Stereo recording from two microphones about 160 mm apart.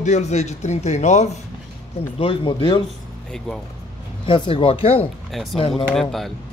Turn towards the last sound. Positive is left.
turn(degrees=0)  # may be behind; listen again after turning